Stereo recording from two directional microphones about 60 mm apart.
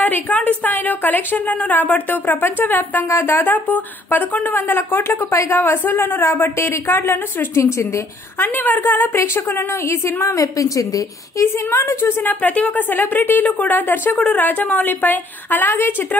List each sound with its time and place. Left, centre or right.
0.0 s a woman's voice: left
8.4 s speech: left
9.2 s a woman's voice: left
10.3 s a woman's voice: left
11.5 s a woman's voice: left
12.4 s speech: left